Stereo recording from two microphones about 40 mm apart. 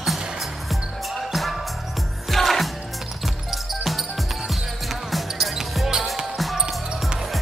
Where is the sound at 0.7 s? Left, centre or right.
Centre.